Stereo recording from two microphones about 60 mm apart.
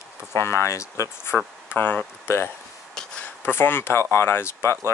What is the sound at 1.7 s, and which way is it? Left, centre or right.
Speech, left.